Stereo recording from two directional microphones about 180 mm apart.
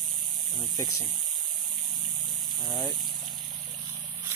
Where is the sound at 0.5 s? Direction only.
25° left (ahead or behind).